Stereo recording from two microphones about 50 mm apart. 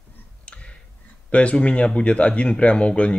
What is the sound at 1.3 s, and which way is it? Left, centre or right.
Speech, left.